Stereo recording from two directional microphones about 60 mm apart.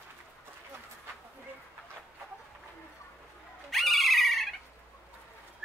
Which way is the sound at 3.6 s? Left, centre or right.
Centre.